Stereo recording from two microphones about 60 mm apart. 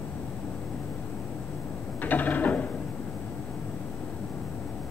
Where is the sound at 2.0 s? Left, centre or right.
Left.